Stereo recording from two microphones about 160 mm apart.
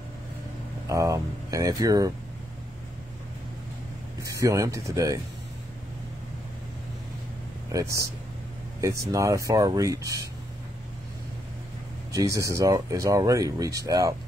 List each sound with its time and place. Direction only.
0.8 s speech: 20° right (ahead or behind)
4.2 s speech: 20° right (ahead or behind)
7.7 s speech: 20° right (ahead or behind)
12.1 s speech: 20° right (ahead or behind)